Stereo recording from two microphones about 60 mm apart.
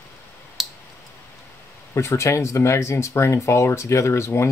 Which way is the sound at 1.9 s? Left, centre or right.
Left.